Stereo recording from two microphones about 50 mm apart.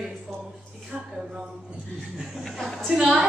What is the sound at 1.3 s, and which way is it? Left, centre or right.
Speech, centre.